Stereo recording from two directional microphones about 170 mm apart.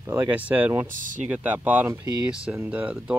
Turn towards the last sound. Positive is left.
turn(degrees=-5)  # may be behind; listen again after turning